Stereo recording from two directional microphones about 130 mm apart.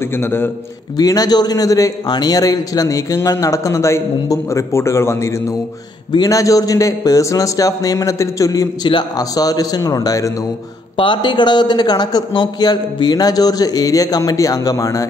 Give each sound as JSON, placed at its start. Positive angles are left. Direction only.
{"t": 0.2, "sound": "a man's voice", "side_deg": 15}
{"t": 0.9, "sound": "a man's voice", "side_deg": 30}